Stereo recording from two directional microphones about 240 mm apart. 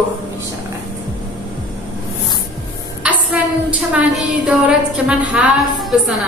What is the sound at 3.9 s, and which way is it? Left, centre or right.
Speech, centre.